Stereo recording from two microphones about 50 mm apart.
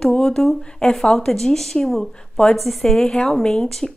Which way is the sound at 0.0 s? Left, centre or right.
Centre.